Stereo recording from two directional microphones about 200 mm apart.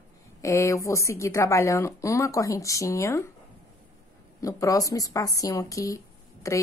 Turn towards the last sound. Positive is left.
turn(degrees=15)  # may be behind; listen again after turning